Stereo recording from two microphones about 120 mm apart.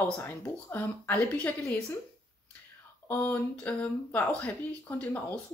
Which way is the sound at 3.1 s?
15° left (ahead or behind).